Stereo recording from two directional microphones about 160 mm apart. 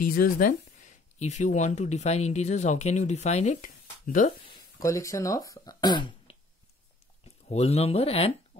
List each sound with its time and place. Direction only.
0.0 s speech: 60° left (ahead or behind)
4.5 s speech: 20° left (ahead or behind)
7.4 s speech: 40° left (ahead or behind)